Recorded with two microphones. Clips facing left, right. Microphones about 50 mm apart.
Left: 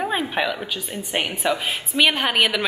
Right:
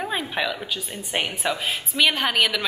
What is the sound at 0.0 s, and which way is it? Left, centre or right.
A woman's voice, centre.